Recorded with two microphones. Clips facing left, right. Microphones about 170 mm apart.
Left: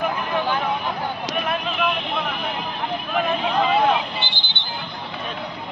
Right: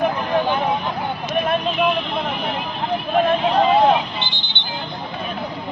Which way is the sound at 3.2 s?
35° right (ahead or behind).